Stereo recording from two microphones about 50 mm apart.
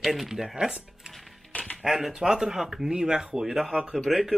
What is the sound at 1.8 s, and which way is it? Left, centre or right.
Speech, centre.